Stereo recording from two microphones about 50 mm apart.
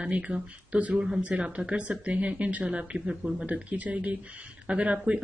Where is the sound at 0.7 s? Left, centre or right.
Right.